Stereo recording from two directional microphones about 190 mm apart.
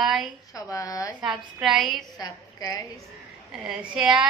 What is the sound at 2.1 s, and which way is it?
Speech, 20° left (ahead or behind).